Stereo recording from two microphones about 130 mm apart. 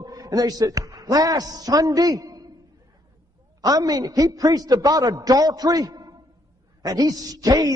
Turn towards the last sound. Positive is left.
turn(degrees=-30)  # may be behind; listen again after turning